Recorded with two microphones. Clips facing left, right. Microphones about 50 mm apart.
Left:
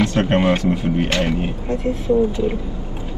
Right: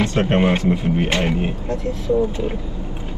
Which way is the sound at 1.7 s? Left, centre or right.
Left.